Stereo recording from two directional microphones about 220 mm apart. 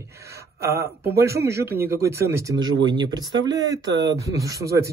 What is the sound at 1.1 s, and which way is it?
Speech, 10° right (ahead or behind).